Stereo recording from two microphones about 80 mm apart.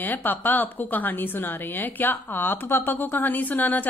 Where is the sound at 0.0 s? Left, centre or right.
Left.